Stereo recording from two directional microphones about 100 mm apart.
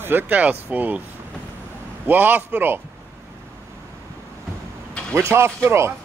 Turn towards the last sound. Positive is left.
turn(degrees=-25)  # may be behind; listen again after turning